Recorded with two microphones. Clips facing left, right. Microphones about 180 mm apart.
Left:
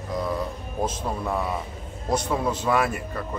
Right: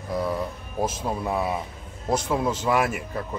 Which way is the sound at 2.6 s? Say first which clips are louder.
Even; 5° right (ahead or behind).